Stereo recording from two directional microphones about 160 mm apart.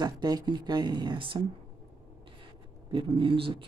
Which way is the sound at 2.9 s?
35° right (ahead or behind).